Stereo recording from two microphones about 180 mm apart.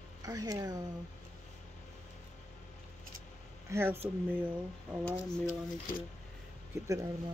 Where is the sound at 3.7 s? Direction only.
15° right (ahead or behind).